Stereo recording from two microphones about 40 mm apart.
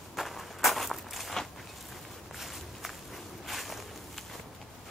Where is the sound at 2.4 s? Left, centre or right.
Centre.